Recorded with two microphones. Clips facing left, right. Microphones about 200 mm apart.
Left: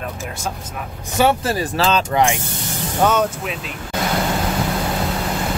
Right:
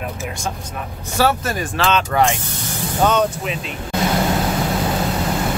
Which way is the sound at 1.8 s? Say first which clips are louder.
Even; 35° left (ahead or behind).